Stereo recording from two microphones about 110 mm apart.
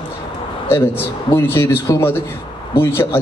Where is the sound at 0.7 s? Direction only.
20° left (ahead or behind).